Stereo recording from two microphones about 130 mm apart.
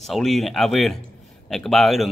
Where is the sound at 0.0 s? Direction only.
Centre (ahead or behind).